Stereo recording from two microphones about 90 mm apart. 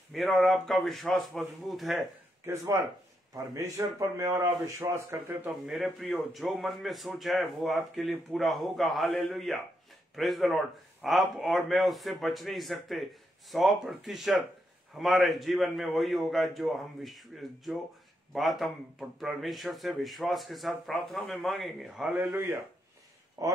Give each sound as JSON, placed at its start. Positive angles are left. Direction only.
{"t": 0.1, "sound": "a man's voice", "side_deg": 0}
{"t": 2.4, "sound": "speech", "side_deg": -30}
{"t": 5.7, "sound": "a man's voice", "side_deg": 0}
{"t": 22.1, "sound": "speech", "side_deg": -20}
{"t": 23.4, "sound": "speech", "side_deg": -40}